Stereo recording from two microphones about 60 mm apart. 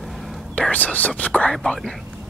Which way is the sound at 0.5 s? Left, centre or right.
Left.